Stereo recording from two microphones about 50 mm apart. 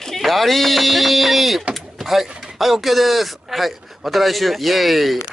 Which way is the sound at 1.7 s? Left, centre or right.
Centre.